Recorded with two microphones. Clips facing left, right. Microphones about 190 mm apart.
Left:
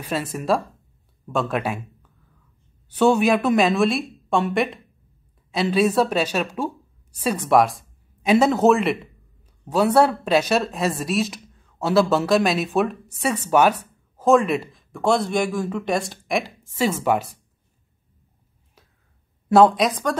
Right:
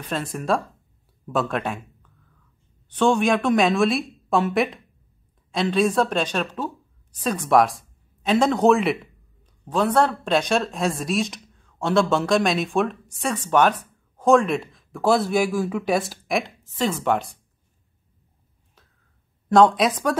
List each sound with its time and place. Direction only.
0.0 s speech: 5° left (ahead or behind)
2.9 s a woman's voice: 10° left (ahead or behind)
19.5 s speech: 5° left (ahead or behind)